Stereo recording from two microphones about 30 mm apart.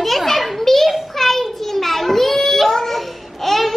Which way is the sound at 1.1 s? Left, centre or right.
Centre.